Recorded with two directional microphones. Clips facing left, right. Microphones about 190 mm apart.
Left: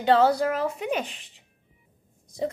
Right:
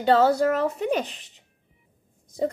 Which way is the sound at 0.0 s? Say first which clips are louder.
Right 1 dB; 40° right (ahead or behind).